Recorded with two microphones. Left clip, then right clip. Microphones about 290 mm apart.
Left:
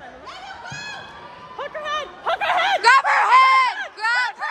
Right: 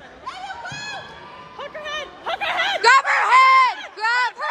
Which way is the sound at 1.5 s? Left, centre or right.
Left.